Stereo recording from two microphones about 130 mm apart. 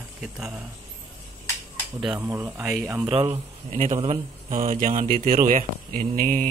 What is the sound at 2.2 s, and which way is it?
Speech, 20° right (ahead or behind).